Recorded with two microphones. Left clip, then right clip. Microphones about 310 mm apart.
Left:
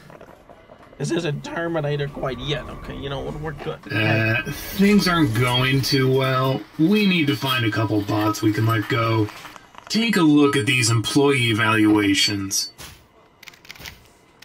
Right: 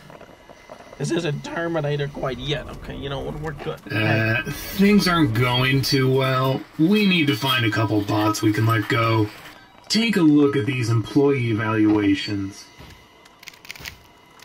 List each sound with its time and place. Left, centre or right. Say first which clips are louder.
0.9 s speech: even; centre
9.8 s a sound: right 4 dB; left
10.1 s speech: left 1 dB; left